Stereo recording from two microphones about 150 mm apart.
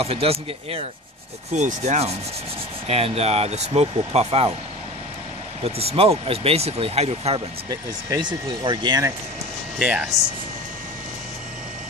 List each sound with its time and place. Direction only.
0.0 s speech: 40° right (ahead or behind)
1.5 s speech: 50° right (ahead or behind)
5.6 s speech: 40° right (ahead or behind)
7.7 s speech: 30° right (ahead or behind)
9.8 s speech: 5° right (ahead or behind)